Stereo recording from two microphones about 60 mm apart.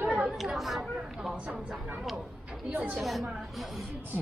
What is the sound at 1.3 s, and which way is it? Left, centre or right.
Speech, right.